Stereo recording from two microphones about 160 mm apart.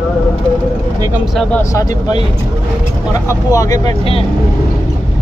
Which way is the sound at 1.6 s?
20° left (ahead or behind).